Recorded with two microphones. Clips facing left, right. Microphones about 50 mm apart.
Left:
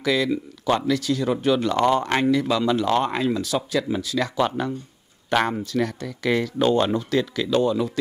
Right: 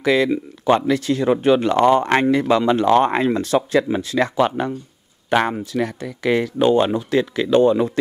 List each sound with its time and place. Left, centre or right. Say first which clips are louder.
0.0 s speech: right 5 dB; right
4.4 s speech: right 4 dB; right